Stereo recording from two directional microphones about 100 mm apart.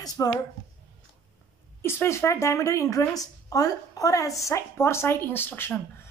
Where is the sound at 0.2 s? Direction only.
30° left (ahead or behind).